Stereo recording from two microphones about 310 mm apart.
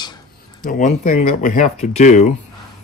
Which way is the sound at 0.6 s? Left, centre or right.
Left.